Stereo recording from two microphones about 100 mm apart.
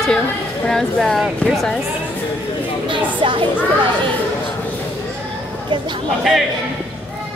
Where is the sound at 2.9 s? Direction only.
55° right (ahead or behind).